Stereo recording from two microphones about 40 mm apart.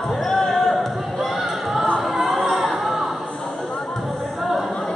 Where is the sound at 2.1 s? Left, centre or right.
Centre.